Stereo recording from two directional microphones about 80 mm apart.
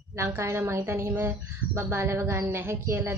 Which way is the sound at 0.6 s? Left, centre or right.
Right.